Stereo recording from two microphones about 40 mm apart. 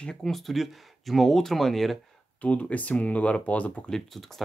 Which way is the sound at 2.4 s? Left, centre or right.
Left.